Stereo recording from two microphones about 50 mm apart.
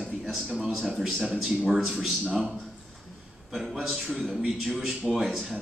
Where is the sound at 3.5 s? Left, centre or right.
Centre.